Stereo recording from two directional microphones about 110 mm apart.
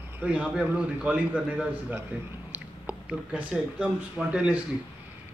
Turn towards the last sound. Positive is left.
turn(degrees=-10)  # may be behind; listen again after turning